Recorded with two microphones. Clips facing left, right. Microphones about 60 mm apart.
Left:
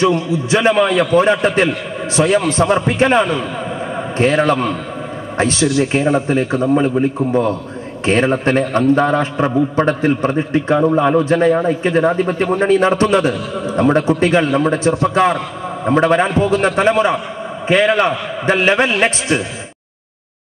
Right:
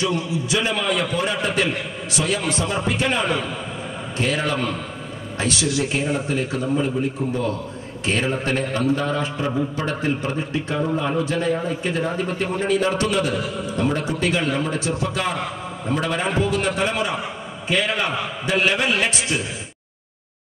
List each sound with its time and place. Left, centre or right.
0.5 s a man's voice: left
15.8 s a man's voice: left